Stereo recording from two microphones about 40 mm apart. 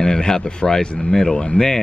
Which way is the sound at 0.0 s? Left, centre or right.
Centre.